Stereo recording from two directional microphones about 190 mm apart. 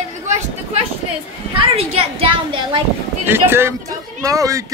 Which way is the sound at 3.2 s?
10° right (ahead or behind).